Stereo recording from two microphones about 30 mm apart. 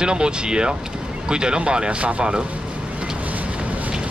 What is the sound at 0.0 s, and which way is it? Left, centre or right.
Speech, right.